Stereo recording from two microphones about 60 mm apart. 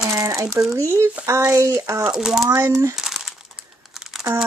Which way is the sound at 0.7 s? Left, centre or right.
Right.